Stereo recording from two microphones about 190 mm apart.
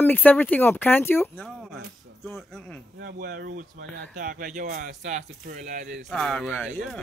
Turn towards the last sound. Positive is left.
turn(degrees=0)  # may be behind; listen again after turning